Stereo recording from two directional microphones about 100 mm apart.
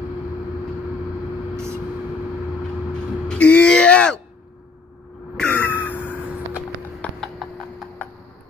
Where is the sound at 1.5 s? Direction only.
25° right (ahead or behind).